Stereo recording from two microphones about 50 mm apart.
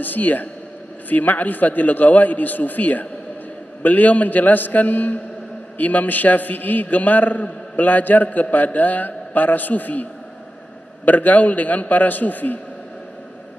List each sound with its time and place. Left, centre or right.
0.0 s a man's voice: left
11.1 s a man's voice: left